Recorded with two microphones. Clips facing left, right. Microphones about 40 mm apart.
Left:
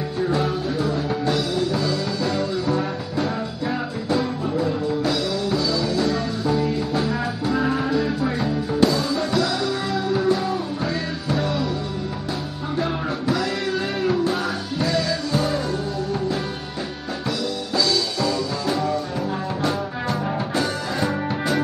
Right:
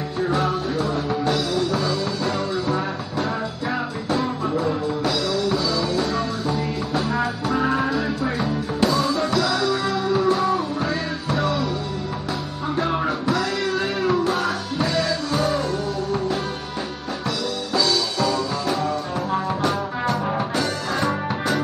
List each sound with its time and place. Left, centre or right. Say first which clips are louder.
1.7 s music: even; centre
5.8 s music: even; centre
9.3 s music: right 1 dB; centre
13.3 s music: left 1 dB; centre
14.8 s music: even; centre
15.3 s music: right 1 dB; centre
19.6 s music: right 1 dB; centre